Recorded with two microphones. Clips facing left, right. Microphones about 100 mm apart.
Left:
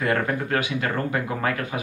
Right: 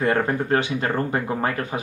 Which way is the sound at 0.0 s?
30° right (ahead or behind).